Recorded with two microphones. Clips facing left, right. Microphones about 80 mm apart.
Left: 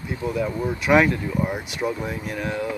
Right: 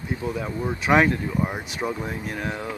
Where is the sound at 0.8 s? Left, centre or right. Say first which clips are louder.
Left 1 dB; right.